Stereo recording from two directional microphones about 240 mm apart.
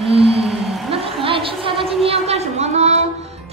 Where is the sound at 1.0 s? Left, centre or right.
Right.